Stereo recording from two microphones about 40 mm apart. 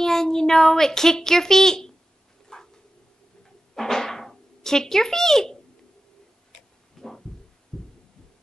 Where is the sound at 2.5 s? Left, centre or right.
Centre.